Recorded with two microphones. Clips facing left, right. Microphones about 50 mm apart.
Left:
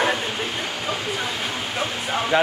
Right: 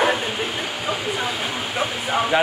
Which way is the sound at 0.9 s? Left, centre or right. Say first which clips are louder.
Right 3 dB; centre.